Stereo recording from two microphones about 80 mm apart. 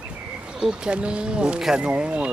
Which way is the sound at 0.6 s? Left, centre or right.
Centre.